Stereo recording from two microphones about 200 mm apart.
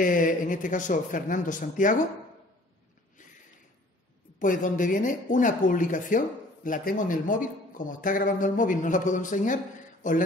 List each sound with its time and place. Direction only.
0.0 s speech: 40° left (ahead or behind)
4.4 s speech: 40° left (ahead or behind)